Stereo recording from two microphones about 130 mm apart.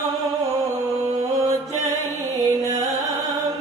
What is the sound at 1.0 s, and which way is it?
Mantra, 25° right (ahead or behind).